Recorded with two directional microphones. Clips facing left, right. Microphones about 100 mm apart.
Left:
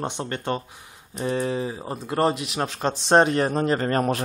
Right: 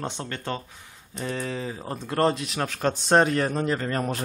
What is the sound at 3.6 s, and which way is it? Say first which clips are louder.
Speech: left 4 dB; 50° left (ahead or behind).